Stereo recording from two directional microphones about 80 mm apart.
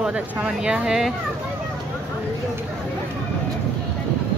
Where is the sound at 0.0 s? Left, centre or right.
Centre.